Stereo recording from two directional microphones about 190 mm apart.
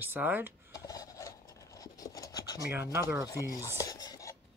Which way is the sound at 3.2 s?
20° left (ahead or behind).